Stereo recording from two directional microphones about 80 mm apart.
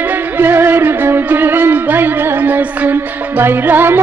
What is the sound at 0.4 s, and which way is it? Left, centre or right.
Music, right.